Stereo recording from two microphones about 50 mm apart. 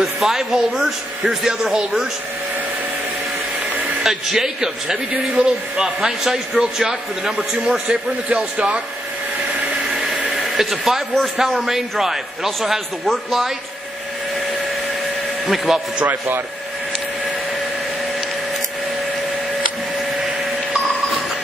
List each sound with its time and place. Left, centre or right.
0.0 s a man's voice: centre
4.0 s a man's voice: centre
5.9 s a man's voice: centre
8.5 s speech: right
10.3 s a man's voice: centre
15.4 s a man's voice: centre